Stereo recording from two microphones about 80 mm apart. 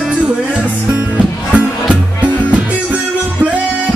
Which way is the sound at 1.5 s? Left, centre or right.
Centre.